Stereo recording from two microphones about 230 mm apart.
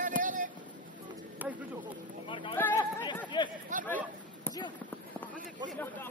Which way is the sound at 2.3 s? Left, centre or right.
Left.